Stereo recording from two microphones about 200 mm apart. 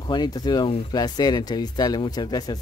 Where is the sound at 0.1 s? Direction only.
20° left (ahead or behind).